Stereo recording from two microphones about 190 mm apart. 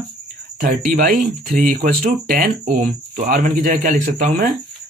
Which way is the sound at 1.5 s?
45° right (ahead or behind).